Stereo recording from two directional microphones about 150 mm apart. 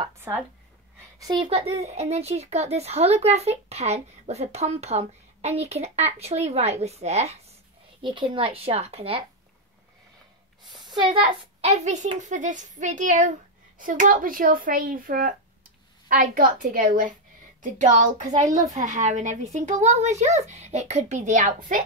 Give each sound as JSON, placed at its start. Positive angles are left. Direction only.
{"t": 0.3, "sound": "speech", "side_deg": -20}
{"t": 1.2, "sound": "speech", "side_deg": -30}
{"t": 1.5, "sound": "speech", "side_deg": -45}
{"t": 8.0, "sound": "a woman's voice", "side_deg": -35}
{"t": 11.0, "sound": "a woman's voice", "side_deg": -30}
{"t": 11.6, "sound": "speech", "side_deg": -50}